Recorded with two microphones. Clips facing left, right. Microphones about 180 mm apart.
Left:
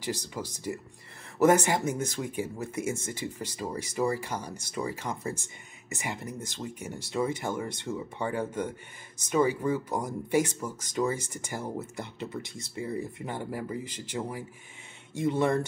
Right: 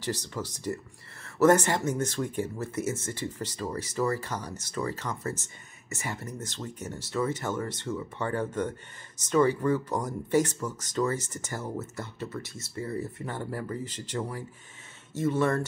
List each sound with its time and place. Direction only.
0.0 s speech: 10° left (ahead or behind)